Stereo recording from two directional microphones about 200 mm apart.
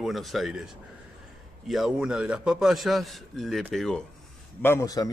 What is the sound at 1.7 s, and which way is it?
A man's voice, centre (ahead or behind).